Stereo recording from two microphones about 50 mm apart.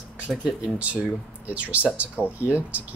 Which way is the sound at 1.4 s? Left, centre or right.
Right.